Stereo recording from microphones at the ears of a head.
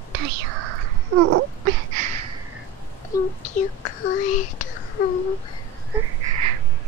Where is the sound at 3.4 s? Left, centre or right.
Left.